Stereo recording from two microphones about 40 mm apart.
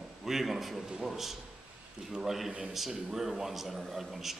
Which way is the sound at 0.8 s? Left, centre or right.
Centre.